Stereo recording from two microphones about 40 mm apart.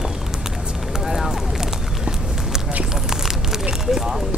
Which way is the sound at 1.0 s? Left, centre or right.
Centre.